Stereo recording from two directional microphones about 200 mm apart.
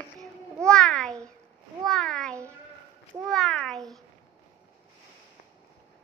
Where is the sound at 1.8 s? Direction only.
Centre (ahead or behind).